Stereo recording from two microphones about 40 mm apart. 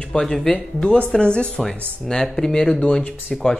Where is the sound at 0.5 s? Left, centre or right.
Left.